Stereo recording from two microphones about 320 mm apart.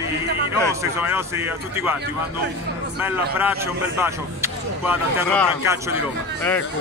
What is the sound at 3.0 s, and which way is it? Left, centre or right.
Speech, centre.